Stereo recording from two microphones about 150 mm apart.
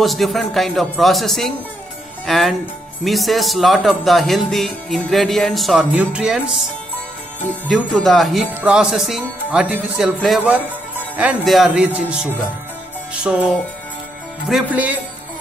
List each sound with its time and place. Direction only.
0.0 s speech: centre (ahead or behind)
7.6 s speech: centre (ahead or behind)
13.1 s music: 10° right (ahead or behind)